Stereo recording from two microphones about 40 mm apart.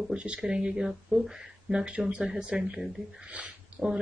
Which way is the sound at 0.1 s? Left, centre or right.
Right.